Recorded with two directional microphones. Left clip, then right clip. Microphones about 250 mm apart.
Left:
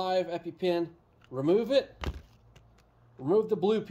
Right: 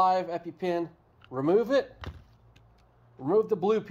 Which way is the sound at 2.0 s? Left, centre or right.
Left.